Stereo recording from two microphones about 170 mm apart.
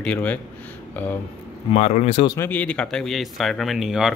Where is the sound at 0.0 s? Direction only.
10° left (ahead or behind).